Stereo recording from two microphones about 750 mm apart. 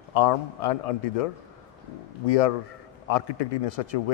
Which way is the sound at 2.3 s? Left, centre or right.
Left.